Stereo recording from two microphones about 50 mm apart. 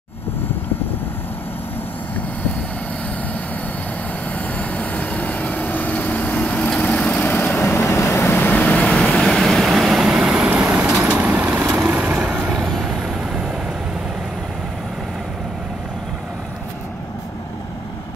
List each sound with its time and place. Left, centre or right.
4.6 s vehicle: left
7.8 s vehicle: left
8.9 s vehicle: centre
10.1 s vehicle: centre
11.6 s vehicle: centre
11.9 s vehicle: right
12.8 s vehicle: centre